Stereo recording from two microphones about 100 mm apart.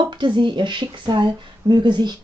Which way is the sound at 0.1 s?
50° right (ahead or behind).